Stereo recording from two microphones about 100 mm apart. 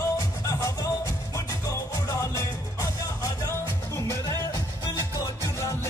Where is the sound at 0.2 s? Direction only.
30° left (ahead or behind).